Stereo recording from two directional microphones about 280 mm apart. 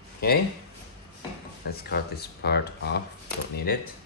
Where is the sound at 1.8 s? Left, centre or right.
Left.